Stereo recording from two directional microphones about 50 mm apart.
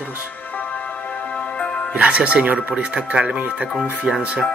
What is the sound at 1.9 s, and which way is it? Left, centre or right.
Speech, right.